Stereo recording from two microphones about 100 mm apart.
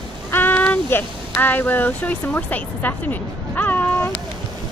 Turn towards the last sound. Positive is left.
turn(degrees=15)  # may be behind; listen again after turning